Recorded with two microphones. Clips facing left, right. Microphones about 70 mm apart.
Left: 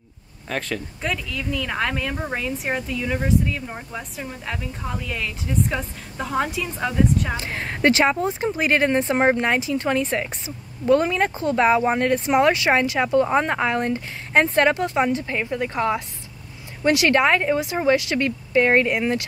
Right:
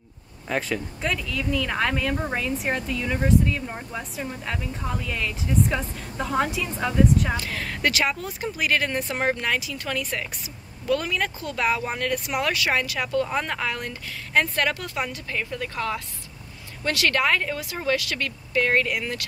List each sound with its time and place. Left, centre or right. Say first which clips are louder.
0.5 s speech: right 1 dB; centre
7.3 s speech: left 2 dB; left